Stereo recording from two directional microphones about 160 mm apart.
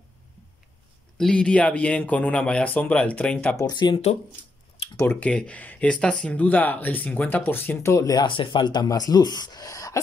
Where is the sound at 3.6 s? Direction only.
25° left (ahead or behind).